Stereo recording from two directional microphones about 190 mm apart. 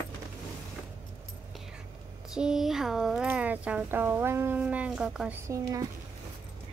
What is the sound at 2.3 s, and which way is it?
Speech, 5° right (ahead or behind).